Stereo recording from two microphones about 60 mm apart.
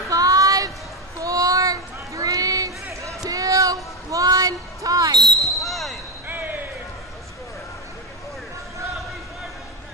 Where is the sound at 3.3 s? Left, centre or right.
Right.